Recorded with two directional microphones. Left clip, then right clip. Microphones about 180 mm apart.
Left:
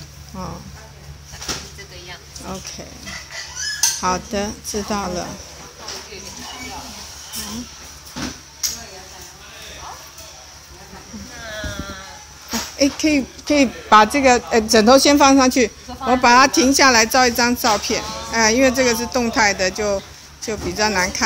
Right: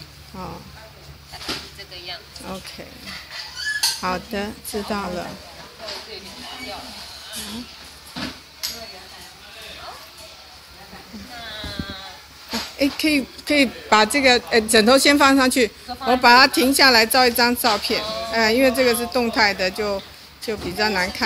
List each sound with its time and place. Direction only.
2.4 s a woman's voice: 5° right (ahead or behind)
4.0 s a woman's voice: 5° left (ahead or behind)
12.7 s a woman's voice: centre (ahead or behind)